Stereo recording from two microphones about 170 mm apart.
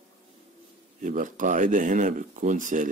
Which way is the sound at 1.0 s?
50° right (ahead or behind).